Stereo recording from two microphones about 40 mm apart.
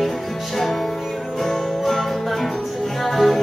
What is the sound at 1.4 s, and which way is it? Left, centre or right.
Music, centre.